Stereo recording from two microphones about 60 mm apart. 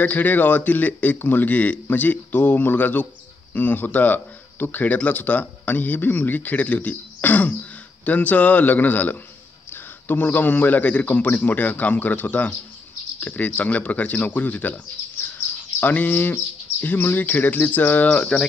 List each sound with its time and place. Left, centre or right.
0.0 s speech: left
15.3 s bird: left
16.8 s speech: left; by 18.5 s centre